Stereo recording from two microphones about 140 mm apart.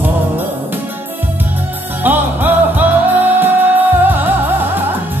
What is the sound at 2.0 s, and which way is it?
Music, 15° right (ahead or behind).